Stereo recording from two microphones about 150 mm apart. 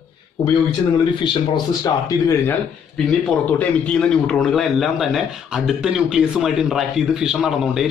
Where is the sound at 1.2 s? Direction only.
30° left (ahead or behind).